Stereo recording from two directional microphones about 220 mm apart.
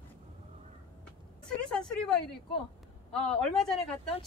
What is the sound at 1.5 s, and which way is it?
Vehicle, 5° left (ahead or behind).